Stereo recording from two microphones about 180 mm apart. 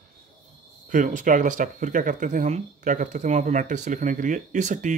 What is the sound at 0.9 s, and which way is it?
Speech, 45° right (ahead or behind).